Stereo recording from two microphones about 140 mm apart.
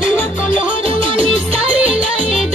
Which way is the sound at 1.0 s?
40° right (ahead or behind).